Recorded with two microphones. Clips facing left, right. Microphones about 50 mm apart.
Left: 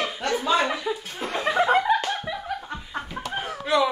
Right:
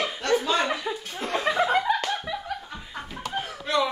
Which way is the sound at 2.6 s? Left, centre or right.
Centre.